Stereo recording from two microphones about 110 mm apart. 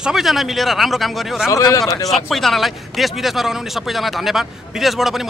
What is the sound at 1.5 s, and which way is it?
Speech, 30° left (ahead or behind).